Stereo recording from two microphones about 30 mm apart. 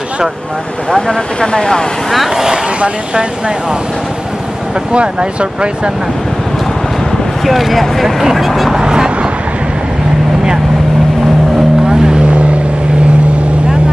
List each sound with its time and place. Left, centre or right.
0.9 s speech: left
2.2 s speech: centre
2.8 s speech: right
4.9 s speech: right
7.4 s speech: centre
8.2 s speech: centre
8.7 s vehicle: right
11.9 s vehicle: right
12.2 s vehicle: right